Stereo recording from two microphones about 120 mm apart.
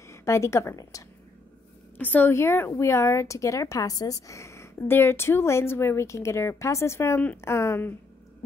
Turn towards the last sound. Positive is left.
turn(degrees=20)  # may be behind; listen again after turning